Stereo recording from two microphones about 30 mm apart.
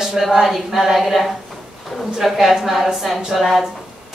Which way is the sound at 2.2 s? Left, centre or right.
Centre.